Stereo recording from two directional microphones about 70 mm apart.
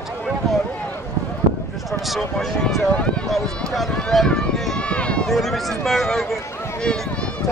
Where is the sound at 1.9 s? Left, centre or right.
Centre.